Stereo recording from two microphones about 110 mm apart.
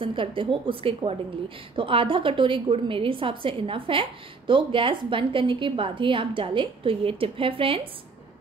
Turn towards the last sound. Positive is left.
turn(degrees=-55)  # may be behind; listen again after turning